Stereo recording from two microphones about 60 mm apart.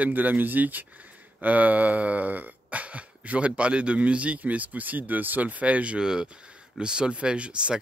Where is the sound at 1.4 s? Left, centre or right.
Right.